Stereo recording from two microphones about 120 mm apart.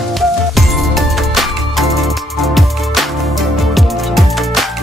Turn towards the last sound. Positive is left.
turn(degrees=0)  # may be behind; listen again after turning